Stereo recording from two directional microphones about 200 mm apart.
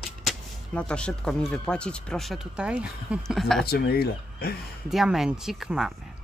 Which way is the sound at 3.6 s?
50° left (ahead or behind).